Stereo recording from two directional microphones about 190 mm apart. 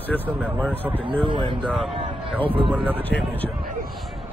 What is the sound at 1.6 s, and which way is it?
Speech, 5° right (ahead or behind).